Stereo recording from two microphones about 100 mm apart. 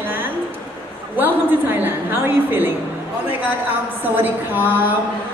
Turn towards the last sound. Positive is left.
turn(degrees=-20)  # may be behind; listen again after turning